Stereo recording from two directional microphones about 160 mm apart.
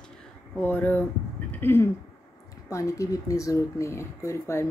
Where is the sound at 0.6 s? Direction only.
10° left (ahead or behind).